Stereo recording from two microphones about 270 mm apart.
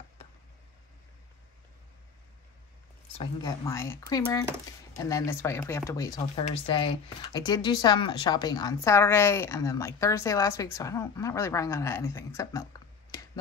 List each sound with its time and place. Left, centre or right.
3.2 s a woman's voice: centre